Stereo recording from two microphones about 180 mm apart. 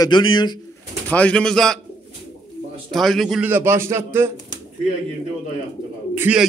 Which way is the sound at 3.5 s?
15° right (ahead or behind).